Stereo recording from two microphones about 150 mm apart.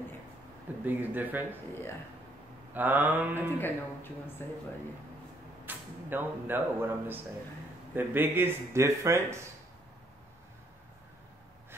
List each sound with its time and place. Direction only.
0.8 s speech: 10° right (ahead or behind)
2.7 s speech: 10° right (ahead or behind)
3.5 s a woman's voice: 15° left (ahead or behind)
5.7 s speech: 15° right (ahead or behind)